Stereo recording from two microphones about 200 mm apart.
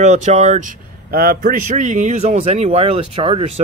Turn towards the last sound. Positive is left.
turn(degrees=-25)  # may be behind; listen again after turning